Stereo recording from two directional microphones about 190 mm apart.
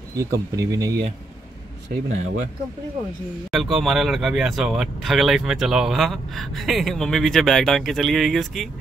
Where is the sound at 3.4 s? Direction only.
Centre (ahead or behind).